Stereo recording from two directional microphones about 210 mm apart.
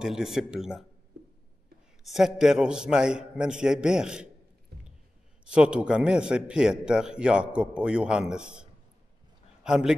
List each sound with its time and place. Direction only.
0.0 s a man's voice: centre (ahead or behind)
2.0 s a man's voice: centre (ahead or behind)
4.7 s a sound: 50° right (ahead or behind)
5.4 s a man's voice: 5° right (ahead or behind)